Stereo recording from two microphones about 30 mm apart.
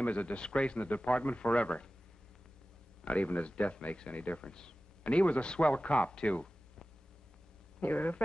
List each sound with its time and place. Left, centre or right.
0.0 s speech: left
0.8 s speech: left
3.1 s speech: left
4.4 s speech: left
5.0 s speech: left
7.8 s speech: left